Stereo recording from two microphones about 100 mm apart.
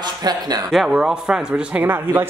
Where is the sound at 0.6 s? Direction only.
5° right (ahead or behind).